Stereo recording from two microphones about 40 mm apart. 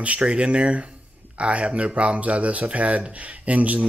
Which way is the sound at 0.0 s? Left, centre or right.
Right.